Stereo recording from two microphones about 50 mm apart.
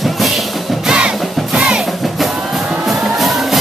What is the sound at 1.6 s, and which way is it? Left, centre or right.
Music, centre.